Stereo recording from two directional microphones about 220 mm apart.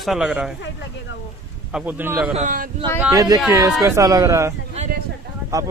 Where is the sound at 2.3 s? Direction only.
35° right (ahead or behind).